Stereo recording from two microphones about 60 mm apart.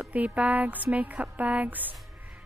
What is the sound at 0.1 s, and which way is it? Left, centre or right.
A woman's voice, right.